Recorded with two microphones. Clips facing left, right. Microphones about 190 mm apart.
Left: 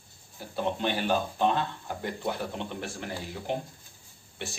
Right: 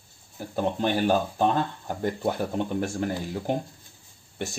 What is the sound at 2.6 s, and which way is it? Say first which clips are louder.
Speech: right 9 dB; 45° right (ahead or behind).